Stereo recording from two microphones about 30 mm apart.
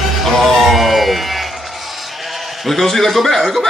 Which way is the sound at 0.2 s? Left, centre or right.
Centre.